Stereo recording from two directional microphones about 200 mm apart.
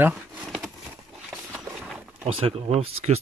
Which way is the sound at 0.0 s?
5° right (ahead or behind).